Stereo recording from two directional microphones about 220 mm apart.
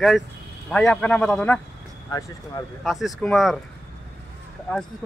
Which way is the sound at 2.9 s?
Centre (ahead or behind).